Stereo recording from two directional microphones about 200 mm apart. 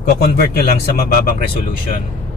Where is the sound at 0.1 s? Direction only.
50° left (ahead or behind).